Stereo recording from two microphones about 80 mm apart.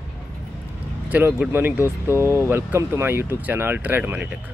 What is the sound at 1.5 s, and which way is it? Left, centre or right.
Speech, right.